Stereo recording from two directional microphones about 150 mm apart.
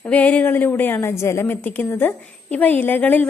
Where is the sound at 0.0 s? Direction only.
10° left (ahead or behind).